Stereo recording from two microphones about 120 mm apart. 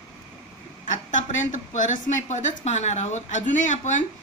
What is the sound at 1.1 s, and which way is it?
A woman's voice, 90° left.